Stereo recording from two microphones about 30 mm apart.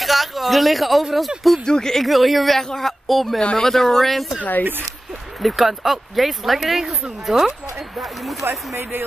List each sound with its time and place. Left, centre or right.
0.0 s a sound: centre
1.7 s speech: centre
2.0 s speech: centre
4.4 s speech: left
5.4 s speech: centre